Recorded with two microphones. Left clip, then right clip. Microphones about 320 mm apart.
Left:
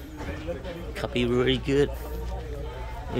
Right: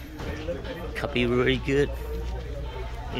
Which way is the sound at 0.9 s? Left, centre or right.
Centre.